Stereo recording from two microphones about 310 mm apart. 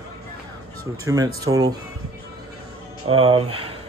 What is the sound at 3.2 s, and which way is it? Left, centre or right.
Speech, centre.